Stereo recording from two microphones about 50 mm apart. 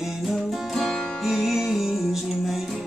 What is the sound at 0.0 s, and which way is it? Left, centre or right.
Music, centre.